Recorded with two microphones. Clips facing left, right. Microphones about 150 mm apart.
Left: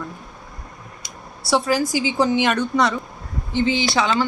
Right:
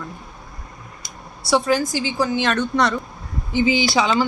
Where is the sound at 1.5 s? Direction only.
5° left (ahead or behind).